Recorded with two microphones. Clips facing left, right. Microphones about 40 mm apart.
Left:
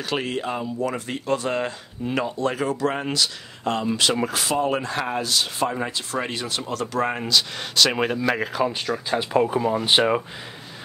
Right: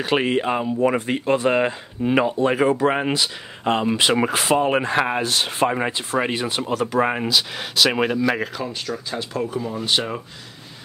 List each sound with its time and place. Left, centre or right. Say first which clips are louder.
0.0 s speech: right 6 dB; right; by 8.2 s centre
8.5 s speech: left 4 dB; centre